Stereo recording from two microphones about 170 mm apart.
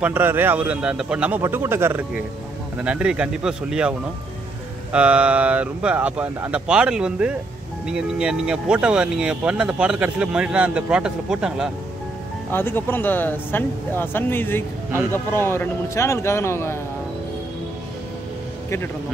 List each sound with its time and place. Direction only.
0.0 s speech: 10° right (ahead or behind)
4.9 s speech: 5° right (ahead or behind)
12.4 s speech: 10° left (ahead or behind)